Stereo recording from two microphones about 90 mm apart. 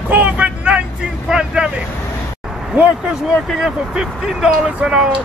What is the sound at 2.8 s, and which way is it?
Speech, 15° right (ahead or behind).